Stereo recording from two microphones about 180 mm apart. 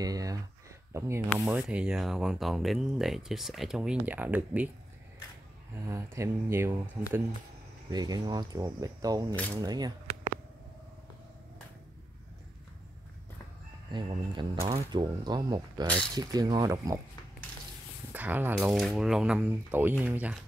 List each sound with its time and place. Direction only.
0.0 s a sound: 20° right (ahead or behind)
0.9 s speech: 15° right (ahead or behind)
5.9 s speech: 15° right (ahead or behind)
7.9 s speech: 20° right (ahead or behind)
13.9 s speech: 25° right (ahead or behind)
18.1 s speech: 10° right (ahead or behind)